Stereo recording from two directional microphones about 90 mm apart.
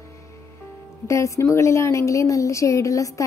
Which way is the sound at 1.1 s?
30° left (ahead or behind).